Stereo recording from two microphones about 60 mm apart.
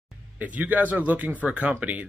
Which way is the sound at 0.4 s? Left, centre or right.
Right.